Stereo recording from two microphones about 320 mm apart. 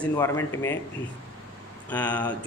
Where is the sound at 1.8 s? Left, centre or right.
Centre.